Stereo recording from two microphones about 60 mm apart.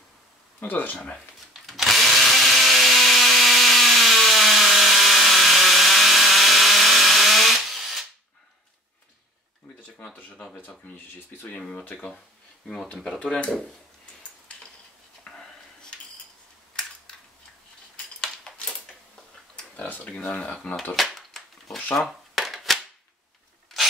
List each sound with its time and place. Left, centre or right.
0.6 s speech: left
0.9 s speech: centre
1.7 s tools: centre
11.7 s speech: left
13.1 s speech: centre
15.3 s a sound: left
18.2 s a sound: centre
19.9 s speech: centre
20.9 s a sound: centre